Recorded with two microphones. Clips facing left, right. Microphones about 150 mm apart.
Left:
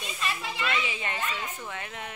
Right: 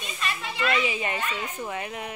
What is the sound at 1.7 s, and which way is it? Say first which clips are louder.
Speech: right 5 dB; 10° right (ahead or behind).